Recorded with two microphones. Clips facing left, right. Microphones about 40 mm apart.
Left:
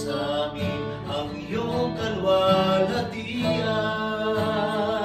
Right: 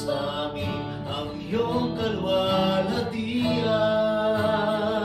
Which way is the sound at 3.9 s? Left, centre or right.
Centre.